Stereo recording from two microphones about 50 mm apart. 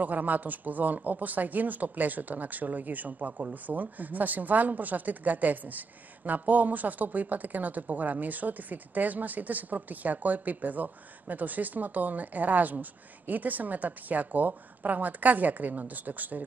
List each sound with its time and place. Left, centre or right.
0.0 s speech: right